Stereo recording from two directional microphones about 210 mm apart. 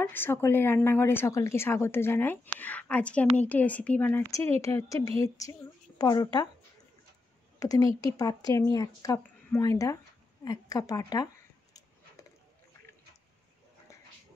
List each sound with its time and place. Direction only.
0.1 s a woman's voice: 10° left (ahead or behind)
7.5 s a woman's voice: 15° left (ahead or behind)